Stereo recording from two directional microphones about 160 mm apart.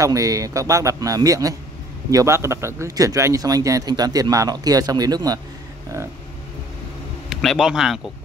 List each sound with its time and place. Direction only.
0.0 s speech: 20° right (ahead or behind)
7.2 s speech: 5° right (ahead or behind)